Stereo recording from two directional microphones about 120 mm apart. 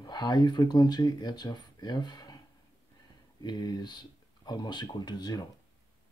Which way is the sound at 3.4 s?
35° left (ahead or behind).